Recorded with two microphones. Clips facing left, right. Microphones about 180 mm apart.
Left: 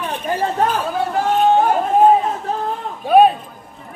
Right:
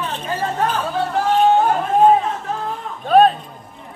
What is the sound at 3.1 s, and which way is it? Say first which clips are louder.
Speech: left 1 dB; 10° left (ahead or behind).